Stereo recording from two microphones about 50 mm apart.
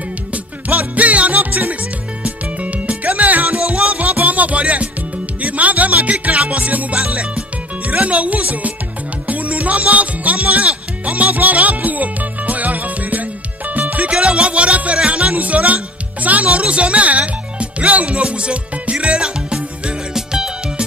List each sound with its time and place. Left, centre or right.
0.3 s music: right
14.1 s music: right